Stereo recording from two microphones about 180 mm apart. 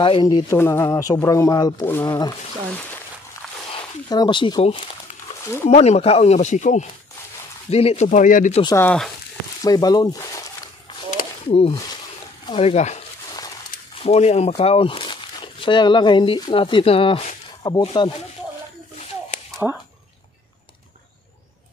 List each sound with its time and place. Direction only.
0.0 s speech: 25° left (ahead or behind)
3.7 s speech: 25° left (ahead or behind); by 8.5 s 45° left (ahead or behind)
8.6 s speech: 10° left (ahead or behind)
9.6 s speech: 20° left (ahead or behind)
11.4 s speech: 35° left (ahead or behind)